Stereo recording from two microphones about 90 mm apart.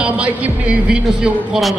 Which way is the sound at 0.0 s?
15° right (ahead or behind).